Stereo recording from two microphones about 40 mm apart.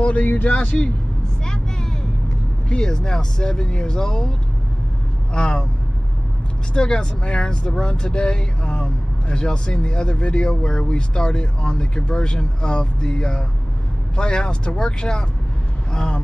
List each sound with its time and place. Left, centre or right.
0.0 s speech: left
1.4 s vehicle: centre
2.7 s speech: centre
5.3 s speech: left
6.7 s speech: left